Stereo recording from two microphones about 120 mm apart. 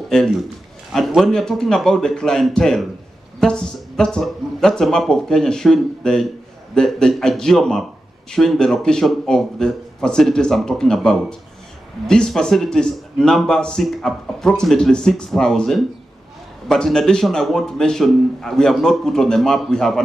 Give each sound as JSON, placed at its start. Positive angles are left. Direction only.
{"t": 0.1, "sound": "a man's voice", "side_deg": 5}